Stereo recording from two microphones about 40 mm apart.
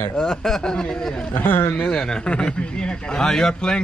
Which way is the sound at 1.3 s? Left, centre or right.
Left.